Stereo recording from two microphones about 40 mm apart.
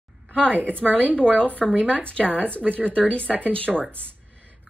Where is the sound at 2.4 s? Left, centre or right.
Right.